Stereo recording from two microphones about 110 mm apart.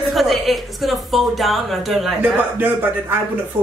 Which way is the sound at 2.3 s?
15° right (ahead or behind).